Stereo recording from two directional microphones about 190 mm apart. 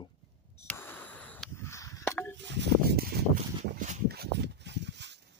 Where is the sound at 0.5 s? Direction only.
10° left (ahead or behind).